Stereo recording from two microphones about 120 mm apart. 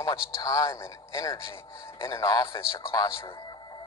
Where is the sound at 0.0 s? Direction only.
25° left (ahead or behind).